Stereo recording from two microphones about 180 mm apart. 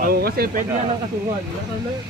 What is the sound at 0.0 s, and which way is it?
Speech, 60° right (ahead or behind).